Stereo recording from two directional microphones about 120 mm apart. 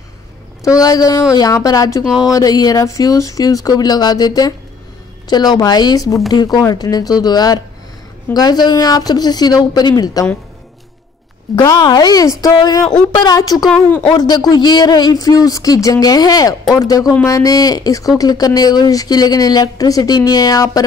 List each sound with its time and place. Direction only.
0.7 s speech: 30° left (ahead or behind)
5.3 s speech: 35° left (ahead or behind)
11.5 s speech: 35° left (ahead or behind)